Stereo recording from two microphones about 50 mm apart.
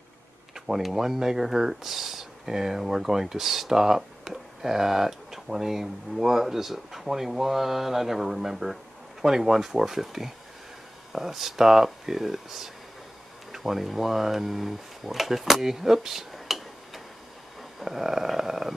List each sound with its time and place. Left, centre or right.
0.7 s speech: centre